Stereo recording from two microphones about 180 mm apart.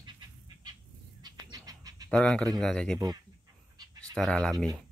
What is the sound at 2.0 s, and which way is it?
Speech, 5° left (ahead or behind).